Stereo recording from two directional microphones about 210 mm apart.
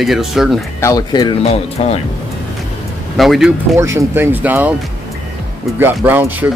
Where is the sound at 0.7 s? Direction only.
15° left (ahead or behind).